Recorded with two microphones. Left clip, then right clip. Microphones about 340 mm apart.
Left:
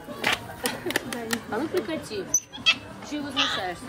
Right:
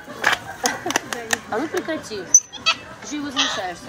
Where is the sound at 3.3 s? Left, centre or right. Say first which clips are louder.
Right 3 dB; centre.